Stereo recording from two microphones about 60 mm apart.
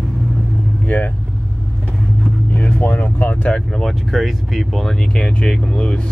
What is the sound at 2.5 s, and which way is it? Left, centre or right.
Speech, left.